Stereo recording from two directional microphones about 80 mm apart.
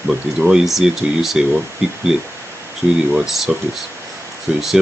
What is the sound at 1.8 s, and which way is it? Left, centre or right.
Speech, centre.